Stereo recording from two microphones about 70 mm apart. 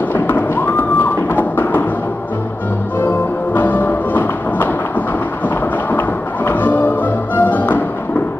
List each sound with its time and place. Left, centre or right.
0.1 s music: left
3.0 s music: left
5.9 s music: left